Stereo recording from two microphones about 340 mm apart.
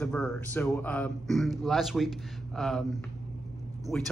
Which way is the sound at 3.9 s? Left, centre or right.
Centre.